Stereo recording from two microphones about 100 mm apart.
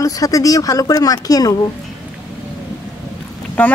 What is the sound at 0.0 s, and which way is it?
Speech, 35° left (ahead or behind).